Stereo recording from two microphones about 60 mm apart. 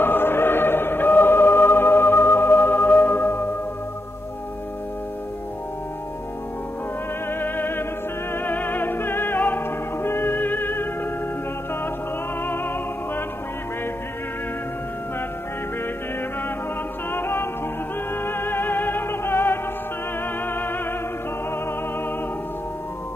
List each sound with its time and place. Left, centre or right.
0.0 s music: left
7.2 s music: left
12.4 s music: left
17.1 s music: left